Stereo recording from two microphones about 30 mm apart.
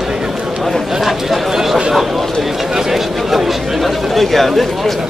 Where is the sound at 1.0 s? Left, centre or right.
Centre.